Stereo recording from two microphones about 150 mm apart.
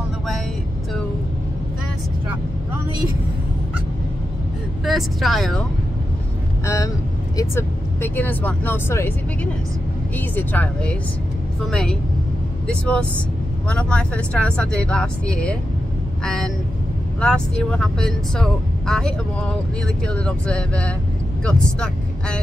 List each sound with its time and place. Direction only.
4.8 s speech: centre (ahead or behind)
6.6 s speech: 20° left (ahead or behind)